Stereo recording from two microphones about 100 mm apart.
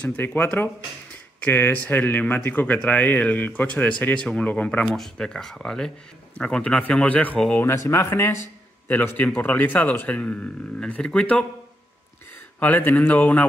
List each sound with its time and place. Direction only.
0.0 s a man's voice: 15° left (ahead or behind)
7.6 s a man's voice: 30° left (ahead or behind); by 11.4 s 10° left (ahead or behind)
12.5 s a man's voice: 15° left (ahead or behind)